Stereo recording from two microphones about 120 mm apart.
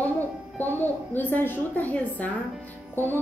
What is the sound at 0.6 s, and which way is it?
Speech, 15° left (ahead or behind).